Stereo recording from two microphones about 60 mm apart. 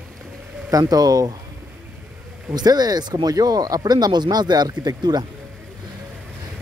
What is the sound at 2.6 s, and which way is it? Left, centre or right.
Speech, right.